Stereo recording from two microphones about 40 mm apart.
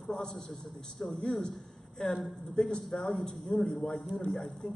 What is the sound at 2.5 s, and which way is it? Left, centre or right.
Speech, centre.